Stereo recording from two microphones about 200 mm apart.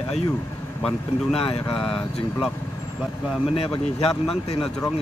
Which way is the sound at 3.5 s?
25° left (ahead or behind).